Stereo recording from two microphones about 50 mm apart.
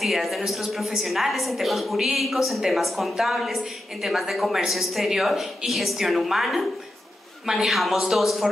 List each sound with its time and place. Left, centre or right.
0.0 s a woman's voice: centre